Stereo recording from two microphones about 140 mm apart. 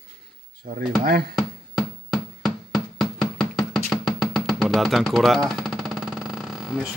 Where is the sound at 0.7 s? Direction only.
90° right.